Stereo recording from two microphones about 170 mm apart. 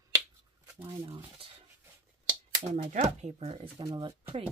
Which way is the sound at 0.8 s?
30° right (ahead or behind).